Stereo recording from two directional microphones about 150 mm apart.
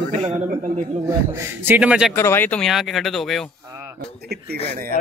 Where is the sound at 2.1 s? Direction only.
15° left (ahead or behind).